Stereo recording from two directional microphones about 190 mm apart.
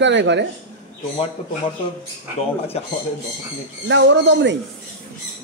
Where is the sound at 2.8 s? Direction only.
35° left (ahead or behind).